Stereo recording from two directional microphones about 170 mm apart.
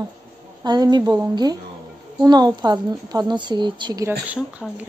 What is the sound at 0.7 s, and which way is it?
A woman's voice, 25° right (ahead or behind).